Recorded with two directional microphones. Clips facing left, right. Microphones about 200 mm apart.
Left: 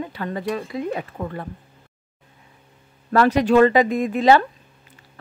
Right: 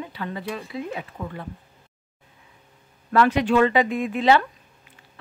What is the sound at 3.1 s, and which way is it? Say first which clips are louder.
Speech: left 3 dB; 40° left (ahead or behind).